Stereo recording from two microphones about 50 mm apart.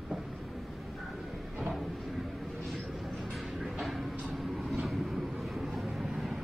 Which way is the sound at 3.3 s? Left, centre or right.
Centre.